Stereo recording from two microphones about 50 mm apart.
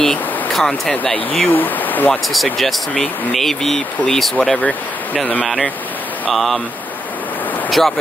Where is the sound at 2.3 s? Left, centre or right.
Centre.